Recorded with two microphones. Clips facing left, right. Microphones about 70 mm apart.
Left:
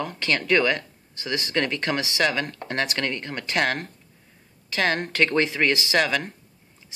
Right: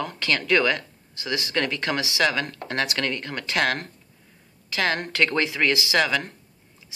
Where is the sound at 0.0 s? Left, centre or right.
Left.